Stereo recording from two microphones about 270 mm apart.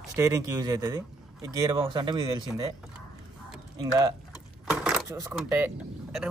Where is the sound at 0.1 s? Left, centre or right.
Centre.